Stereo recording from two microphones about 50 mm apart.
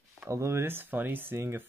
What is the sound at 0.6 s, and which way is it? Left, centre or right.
Speech, right.